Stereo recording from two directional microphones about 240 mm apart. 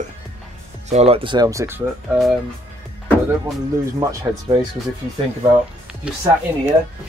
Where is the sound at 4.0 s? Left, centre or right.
Centre.